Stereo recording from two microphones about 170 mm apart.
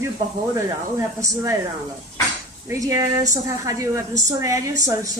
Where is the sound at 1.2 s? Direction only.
20° right (ahead or behind).